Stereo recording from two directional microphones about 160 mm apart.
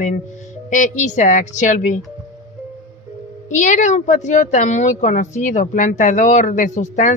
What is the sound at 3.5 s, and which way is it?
Speech, 50° left (ahead or behind).